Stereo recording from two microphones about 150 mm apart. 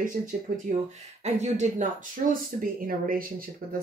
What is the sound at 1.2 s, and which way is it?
Speech, 50° right (ahead or behind).